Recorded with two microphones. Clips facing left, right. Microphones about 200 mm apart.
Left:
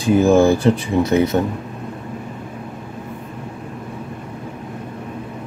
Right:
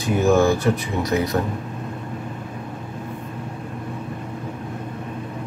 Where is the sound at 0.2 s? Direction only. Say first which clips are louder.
Left 2 dB; 30° left (ahead or behind).